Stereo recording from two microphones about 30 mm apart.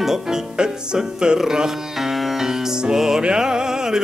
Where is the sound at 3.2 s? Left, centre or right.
Right.